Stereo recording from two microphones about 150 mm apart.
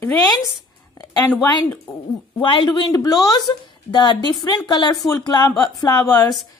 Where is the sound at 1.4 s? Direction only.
20° left (ahead or behind).